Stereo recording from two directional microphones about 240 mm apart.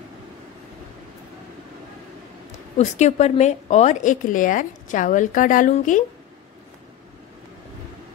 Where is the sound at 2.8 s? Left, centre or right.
Left.